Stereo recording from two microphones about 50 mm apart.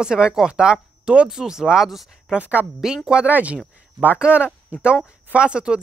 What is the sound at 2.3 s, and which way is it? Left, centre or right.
Speech, right.